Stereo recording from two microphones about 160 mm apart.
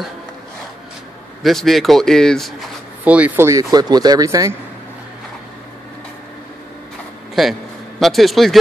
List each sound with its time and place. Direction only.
1.4 s a man's voice: centre (ahead or behind)
3.0 s speech: 10° right (ahead or behind)
8.0 s a man's voice: centre (ahead or behind)